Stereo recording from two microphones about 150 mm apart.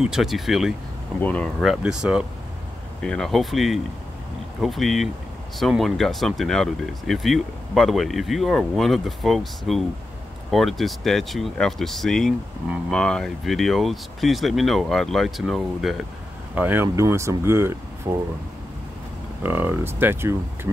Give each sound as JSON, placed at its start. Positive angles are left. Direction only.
{"t": 0.0, "sound": "speech", "side_deg": 0}
{"t": 1.2, "sound": "speech", "side_deg": 10}
{"t": 1.6, "sound": "speech", "side_deg": -5}
{"t": 16.5, "sound": "speech", "side_deg": -15}
{"t": 19.4, "sound": "speech", "side_deg": -15}